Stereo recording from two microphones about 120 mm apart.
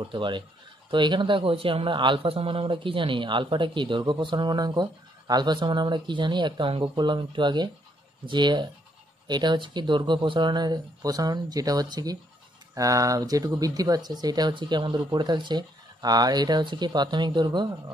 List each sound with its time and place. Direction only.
0.1 s a man's voice: 40° right (ahead or behind)